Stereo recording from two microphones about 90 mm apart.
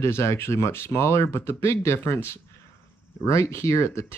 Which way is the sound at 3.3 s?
30° left (ahead or behind).